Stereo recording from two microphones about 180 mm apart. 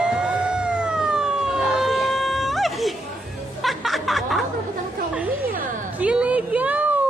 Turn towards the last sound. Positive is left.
turn(degrees=-10)  # may be behind; listen again after turning